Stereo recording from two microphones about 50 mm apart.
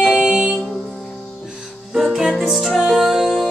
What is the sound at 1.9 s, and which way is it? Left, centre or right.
Music, centre.